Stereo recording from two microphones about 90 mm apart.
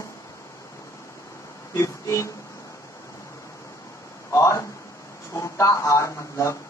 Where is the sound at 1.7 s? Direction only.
30° left (ahead or behind).